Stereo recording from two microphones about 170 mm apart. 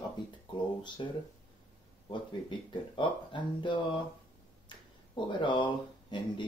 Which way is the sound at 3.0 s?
30° left (ahead or behind).